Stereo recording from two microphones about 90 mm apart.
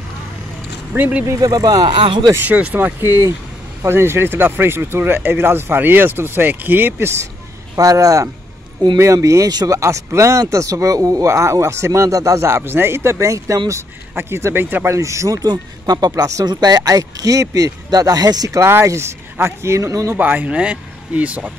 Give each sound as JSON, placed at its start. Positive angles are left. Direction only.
{"t": 0.9, "sound": "speech", "side_deg": -20}
{"t": 1.2, "sound": "speech", "side_deg": -45}
{"t": 2.3, "sound": "speech", "side_deg": -15}
{"t": 7.7, "sound": "speech", "side_deg": -40}
{"t": 15.0, "sound": "speech", "side_deg": -35}
{"t": 15.4, "sound": "speech", "side_deg": -45}
{"t": 18.6, "sound": "speech", "side_deg": -30}
{"t": 20.2, "sound": "speech", "side_deg": -20}